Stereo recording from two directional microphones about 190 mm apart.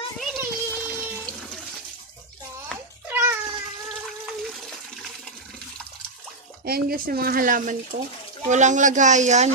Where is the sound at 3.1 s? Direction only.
10° right (ahead or behind).